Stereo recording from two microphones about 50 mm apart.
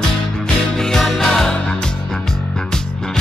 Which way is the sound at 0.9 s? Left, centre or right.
Centre.